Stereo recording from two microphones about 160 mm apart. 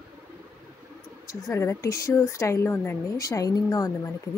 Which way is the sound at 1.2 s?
20° left (ahead or behind).